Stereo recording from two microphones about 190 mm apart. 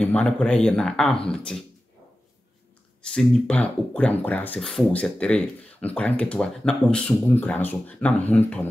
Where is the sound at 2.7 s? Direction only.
5° left (ahead or behind).